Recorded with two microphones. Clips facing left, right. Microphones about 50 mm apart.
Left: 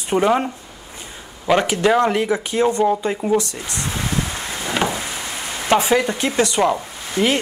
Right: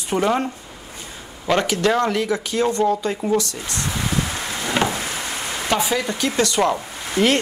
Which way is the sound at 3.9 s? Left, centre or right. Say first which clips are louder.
Even; centre.